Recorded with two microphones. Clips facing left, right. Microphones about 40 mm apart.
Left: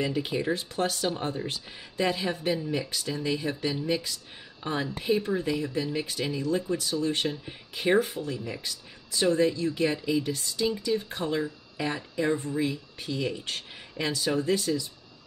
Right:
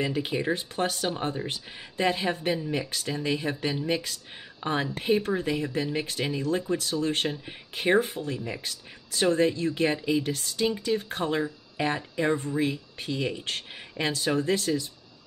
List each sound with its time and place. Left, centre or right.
0.0 s speech: right
1.1 s speech: right
1.5 s speech: right
2.7 s speech: right
5.3 s speech: right
8.6 s a sound: right
9.3 s speech: right